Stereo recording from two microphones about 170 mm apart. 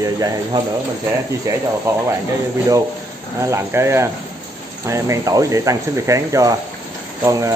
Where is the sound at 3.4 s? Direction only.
15° right (ahead or behind).